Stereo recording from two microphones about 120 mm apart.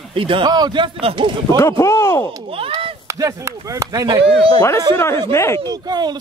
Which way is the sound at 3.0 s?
25° right (ahead or behind).